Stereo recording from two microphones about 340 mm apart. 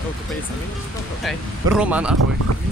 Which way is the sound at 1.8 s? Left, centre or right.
Centre.